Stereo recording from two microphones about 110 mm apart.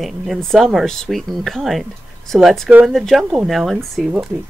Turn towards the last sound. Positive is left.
turn(degrees=0)  # may be behind; listen again after turning